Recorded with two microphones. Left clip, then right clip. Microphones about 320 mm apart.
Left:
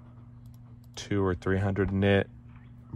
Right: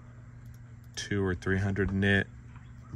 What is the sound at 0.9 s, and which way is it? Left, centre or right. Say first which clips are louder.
Speech: left 3 dB; centre.